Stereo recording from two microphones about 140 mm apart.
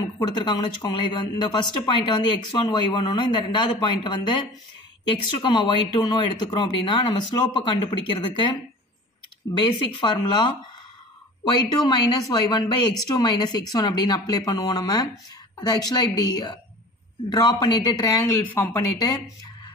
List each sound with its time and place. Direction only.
0.6 s speech: 30° left (ahead or behind)
9.5 s speech: 35° left (ahead or behind)
11.8 s speech: 30° left (ahead or behind)
18.4 s speech: 15° left (ahead or behind)
18.9 s speech: 25° left (ahead or behind)